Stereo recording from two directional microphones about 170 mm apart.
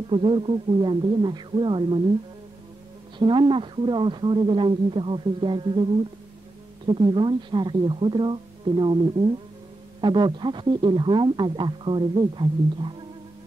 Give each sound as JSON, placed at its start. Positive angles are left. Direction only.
{"t": 0.1, "sound": "speech", "side_deg": -30}
{"t": 3.2, "sound": "speech", "side_deg": -30}
{"t": 6.9, "sound": "speech", "side_deg": -30}